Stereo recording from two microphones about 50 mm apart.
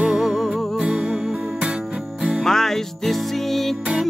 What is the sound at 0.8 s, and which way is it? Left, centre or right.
Music, centre.